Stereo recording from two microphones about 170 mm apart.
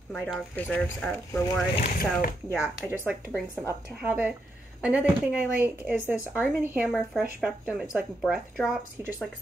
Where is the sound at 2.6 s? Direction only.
10° right (ahead or behind).